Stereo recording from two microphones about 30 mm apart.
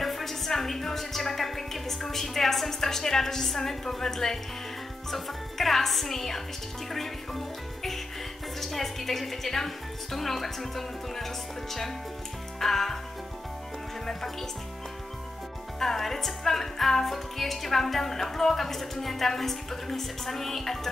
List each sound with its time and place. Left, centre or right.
0.0 s music: centre
5.1 s music: centre
6.9 s a woman's voice: centre
10.1 s music: centre
15.8 s music: centre